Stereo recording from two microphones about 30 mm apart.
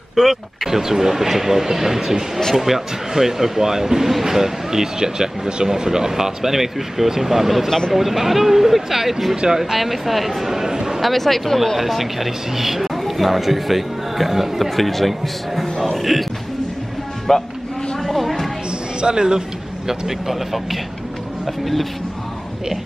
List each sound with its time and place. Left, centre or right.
0.1 s speech: centre
9.8 s speech: centre
10.5 s a sound: centre
11.0 s speech: centre
11.8 s speech: centre
17.3 s speech: centre
18.0 s a sound: centre
18.9 s speech: right
19.9 s speech: centre